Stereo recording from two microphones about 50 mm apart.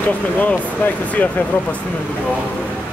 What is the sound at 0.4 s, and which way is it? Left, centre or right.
Speech, left.